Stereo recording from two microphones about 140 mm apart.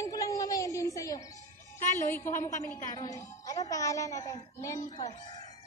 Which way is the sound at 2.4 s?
25° left (ahead or behind).